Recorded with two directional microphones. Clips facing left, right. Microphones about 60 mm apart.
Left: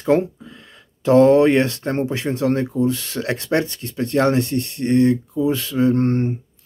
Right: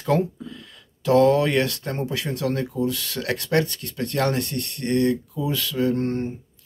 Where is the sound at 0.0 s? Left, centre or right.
Left.